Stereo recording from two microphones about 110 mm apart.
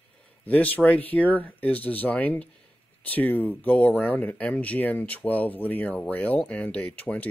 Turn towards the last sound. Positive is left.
turn(degrees=15)  # may be behind; listen again after turning